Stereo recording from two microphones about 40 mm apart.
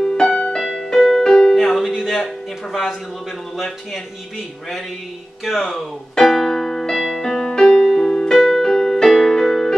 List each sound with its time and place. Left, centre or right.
0.0 s music: centre
0.6 s music: centre
1.5 s music: centre
2.0 s speech: centre
5.4 s speech: centre
6.1 s music: centre